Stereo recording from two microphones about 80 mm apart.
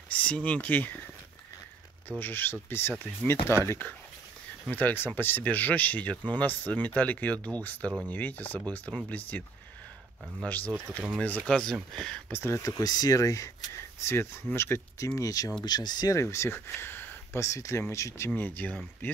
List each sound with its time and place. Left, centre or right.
0.1 s speech: centre
2.0 s speech: left
4.6 s speech: left
10.4 s speech: left
11.4 s speech: centre
12.3 s speech: left
12.6 s speech: left
14.0 s speech: left
15.6 s speech: left
16.1 s speech: left
17.4 s speech: left